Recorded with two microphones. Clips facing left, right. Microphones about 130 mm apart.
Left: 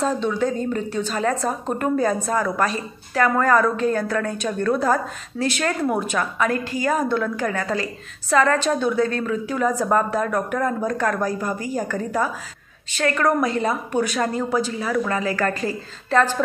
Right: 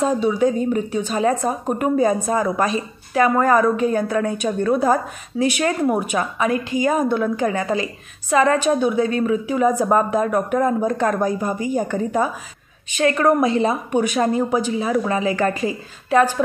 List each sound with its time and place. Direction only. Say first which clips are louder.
0.0 s a woman's voice: right 4 dB; 15° right (ahead or behind)